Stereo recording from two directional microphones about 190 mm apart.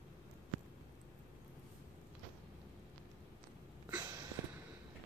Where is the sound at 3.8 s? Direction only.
20° right (ahead or behind).